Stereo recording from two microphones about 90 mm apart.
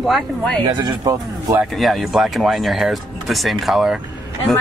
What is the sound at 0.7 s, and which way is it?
Speech, 50° right (ahead or behind).